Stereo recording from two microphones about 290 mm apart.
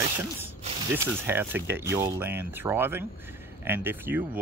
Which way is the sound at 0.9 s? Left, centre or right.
Centre.